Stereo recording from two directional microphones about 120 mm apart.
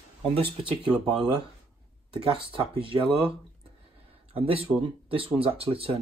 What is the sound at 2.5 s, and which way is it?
Speech, 45° right (ahead or behind).